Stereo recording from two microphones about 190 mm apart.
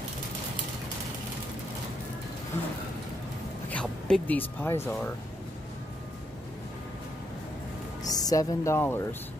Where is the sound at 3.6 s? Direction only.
5° left (ahead or behind).